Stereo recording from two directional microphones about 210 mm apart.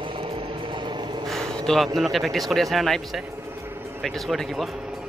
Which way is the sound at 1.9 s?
Centre (ahead or behind).